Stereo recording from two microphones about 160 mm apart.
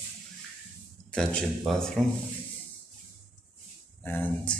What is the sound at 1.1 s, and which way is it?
Speech, 5° left (ahead or behind).